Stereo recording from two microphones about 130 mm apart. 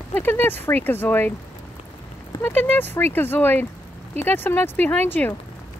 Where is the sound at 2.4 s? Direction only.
15° left (ahead or behind).